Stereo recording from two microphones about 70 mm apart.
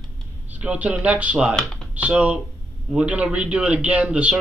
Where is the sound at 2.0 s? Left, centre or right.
Right.